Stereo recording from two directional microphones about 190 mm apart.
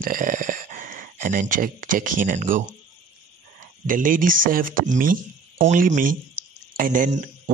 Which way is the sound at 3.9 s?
45° right (ahead or behind).